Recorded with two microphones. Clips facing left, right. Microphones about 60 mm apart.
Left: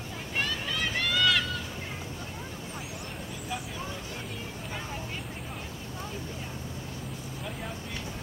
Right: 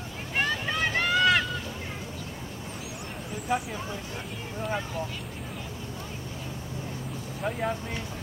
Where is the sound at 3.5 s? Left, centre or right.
Right.